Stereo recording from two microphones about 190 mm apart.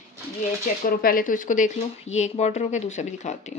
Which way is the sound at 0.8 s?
50° left (ahead or behind).